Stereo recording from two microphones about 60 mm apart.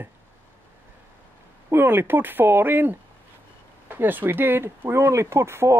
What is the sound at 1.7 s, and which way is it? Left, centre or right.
Speech, right.